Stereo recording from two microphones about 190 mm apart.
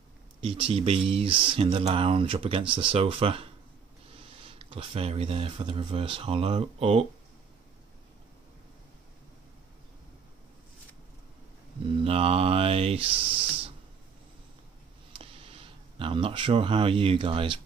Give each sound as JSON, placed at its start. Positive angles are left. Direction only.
{"t": 0.4, "sound": "speech", "side_deg": -25}
{"t": 12.0, "sound": "speech", "side_deg": -30}
{"t": 15.1, "sound": "a sound", "side_deg": -30}